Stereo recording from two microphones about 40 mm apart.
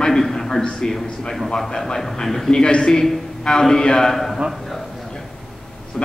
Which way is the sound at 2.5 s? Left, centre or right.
Left.